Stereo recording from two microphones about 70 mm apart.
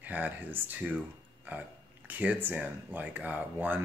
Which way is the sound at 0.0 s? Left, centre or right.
Right.